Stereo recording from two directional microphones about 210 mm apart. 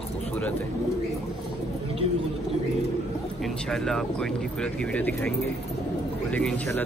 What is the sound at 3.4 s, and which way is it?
Speech, 5° left (ahead or behind).